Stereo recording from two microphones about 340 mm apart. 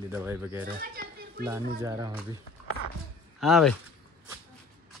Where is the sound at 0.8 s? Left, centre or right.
Right.